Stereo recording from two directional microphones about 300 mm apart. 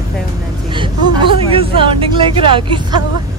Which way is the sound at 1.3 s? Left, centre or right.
Centre.